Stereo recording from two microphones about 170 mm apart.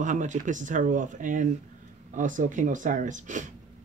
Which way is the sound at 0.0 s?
45° right (ahead or behind).